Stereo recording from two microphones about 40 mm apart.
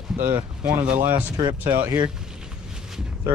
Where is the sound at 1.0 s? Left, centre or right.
Right.